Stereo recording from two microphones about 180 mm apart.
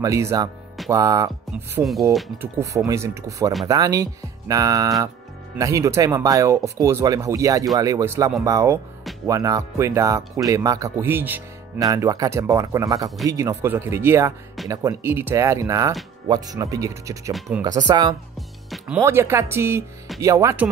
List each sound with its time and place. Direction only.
0.0 s speech: 15° right (ahead or behind)
1.8 s speech: centre (ahead or behind)
2.3 s speech: 10° right (ahead or behind)